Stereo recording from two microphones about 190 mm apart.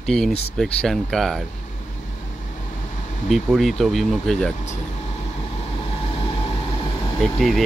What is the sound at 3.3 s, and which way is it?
Speech, centre (ahead or behind).